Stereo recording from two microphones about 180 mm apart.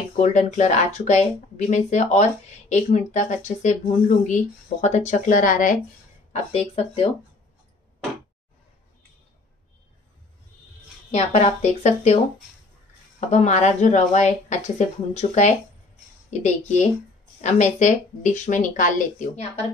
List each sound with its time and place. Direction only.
0.2 s speech: 40° left (ahead or behind)
6.3 s speech: 35° left (ahead or behind)
11.1 s speech: 35° left (ahead or behind)
13.3 s speech: 40° left (ahead or behind)